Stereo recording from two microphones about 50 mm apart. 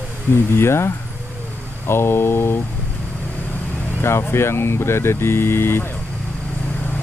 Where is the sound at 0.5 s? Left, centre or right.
Left.